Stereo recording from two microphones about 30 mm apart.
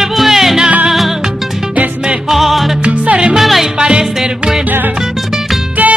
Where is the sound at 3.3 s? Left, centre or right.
Centre.